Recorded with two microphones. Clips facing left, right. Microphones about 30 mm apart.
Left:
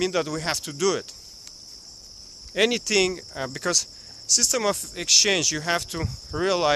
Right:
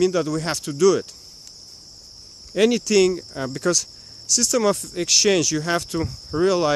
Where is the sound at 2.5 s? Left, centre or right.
Centre.